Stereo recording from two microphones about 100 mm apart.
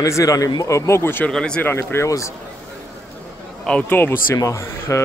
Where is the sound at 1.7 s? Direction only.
25° left (ahead or behind).